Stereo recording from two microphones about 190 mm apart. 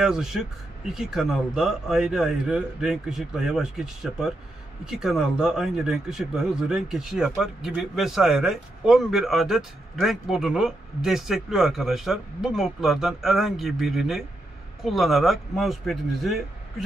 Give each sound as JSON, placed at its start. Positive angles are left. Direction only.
{"t": 0.0, "sound": "speech", "side_deg": -5}